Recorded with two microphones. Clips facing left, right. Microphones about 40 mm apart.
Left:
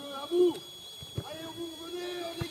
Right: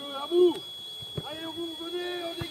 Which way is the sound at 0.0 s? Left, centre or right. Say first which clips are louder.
Right 4 dB; right.